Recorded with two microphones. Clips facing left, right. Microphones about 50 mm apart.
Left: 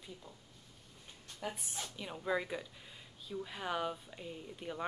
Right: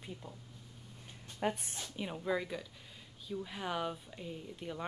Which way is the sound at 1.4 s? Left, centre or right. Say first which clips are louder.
Right 7 dB; right.